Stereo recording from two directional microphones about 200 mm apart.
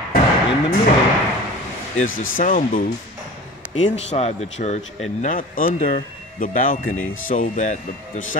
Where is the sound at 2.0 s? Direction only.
80° left.